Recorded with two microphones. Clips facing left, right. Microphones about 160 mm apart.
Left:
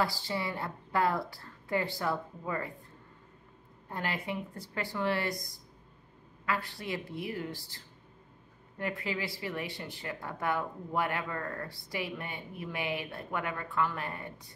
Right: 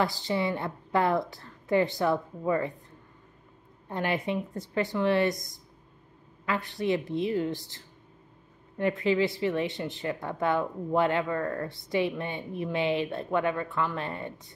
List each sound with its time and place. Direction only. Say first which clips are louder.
0.0 s speech: right 5 dB; 20° right (ahead or behind)
3.9 s speech: right 7 dB; 20° right (ahead or behind)